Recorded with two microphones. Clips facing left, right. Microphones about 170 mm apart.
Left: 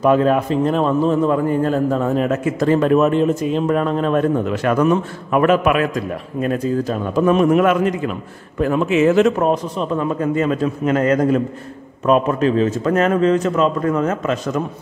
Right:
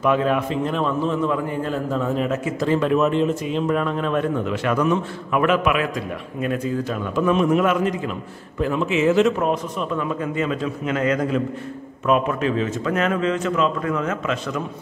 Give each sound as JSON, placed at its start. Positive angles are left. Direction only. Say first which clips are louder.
{"t": 0.0, "sound": "a man's voice", "louder": "left 5 dB", "side_deg": 40}